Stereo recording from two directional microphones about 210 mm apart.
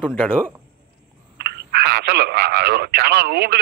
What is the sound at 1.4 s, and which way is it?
Telephone, 50° right (ahead or behind).